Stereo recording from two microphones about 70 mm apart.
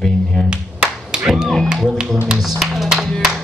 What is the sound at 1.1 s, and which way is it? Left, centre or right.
Speech, centre.